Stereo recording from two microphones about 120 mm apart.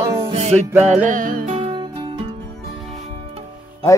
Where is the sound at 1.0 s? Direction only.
90° right.